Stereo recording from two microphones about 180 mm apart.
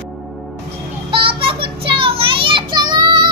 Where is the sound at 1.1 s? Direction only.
30° right (ahead or behind).